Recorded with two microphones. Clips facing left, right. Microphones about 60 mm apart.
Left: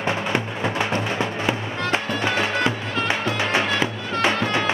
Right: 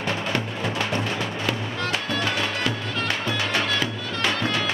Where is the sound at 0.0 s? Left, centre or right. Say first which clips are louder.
Left 3 dB; left.